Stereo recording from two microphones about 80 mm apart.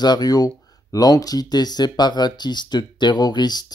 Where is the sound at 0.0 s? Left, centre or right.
Left.